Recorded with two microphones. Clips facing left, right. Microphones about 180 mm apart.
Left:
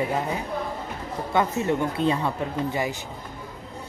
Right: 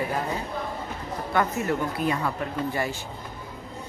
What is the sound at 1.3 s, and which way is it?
A woman's voice, 20° left (ahead or behind).